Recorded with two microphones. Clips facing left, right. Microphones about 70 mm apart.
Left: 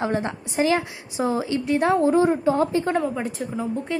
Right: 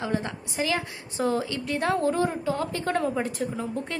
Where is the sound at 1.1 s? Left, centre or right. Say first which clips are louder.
Left 3 dB; centre.